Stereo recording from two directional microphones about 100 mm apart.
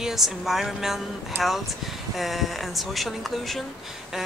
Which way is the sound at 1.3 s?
25° right (ahead or behind).